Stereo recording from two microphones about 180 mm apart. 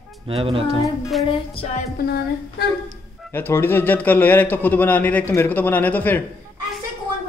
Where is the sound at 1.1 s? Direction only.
Centre (ahead or behind).